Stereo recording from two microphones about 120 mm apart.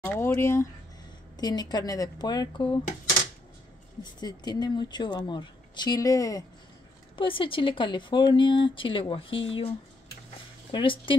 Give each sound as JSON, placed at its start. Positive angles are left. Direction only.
{"t": 0.0, "sound": "speech", "side_deg": 15}
{"t": 1.3, "sound": "speech", "side_deg": 35}
{"t": 4.0, "sound": "speech", "side_deg": 35}
{"t": 7.2, "sound": "speech", "side_deg": 45}